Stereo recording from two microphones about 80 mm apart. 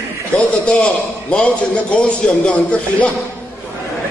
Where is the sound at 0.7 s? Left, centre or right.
Centre.